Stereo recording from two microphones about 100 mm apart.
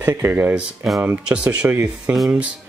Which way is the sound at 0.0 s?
25° right (ahead or behind).